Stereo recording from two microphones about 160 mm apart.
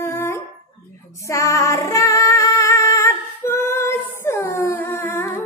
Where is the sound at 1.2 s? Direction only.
20° left (ahead or behind).